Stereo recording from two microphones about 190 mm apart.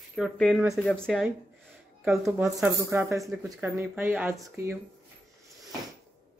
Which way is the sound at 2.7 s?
15° right (ahead or behind).